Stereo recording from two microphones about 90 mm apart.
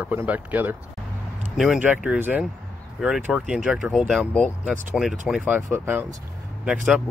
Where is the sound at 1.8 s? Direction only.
15° right (ahead or behind).